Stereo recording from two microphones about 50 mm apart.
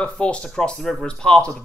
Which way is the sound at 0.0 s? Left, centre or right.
Left.